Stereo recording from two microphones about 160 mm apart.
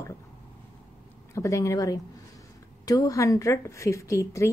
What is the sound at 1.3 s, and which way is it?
A woman's voice, 20° left (ahead or behind).